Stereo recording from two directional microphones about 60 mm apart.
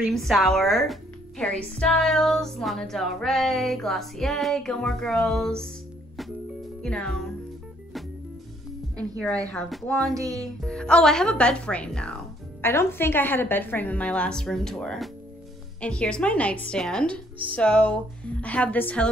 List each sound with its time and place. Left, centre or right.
0.0 s a woman's voice: centre
1.5 s music: centre
6.8 s music: centre
8.9 s speech: centre
9.8 s music: centre
10.1 s music: right
10.7 s music: centre
12.6 s a woman's voice: left
14.0 s music: centre
15.8 s speech: centre
19.0 s music: centre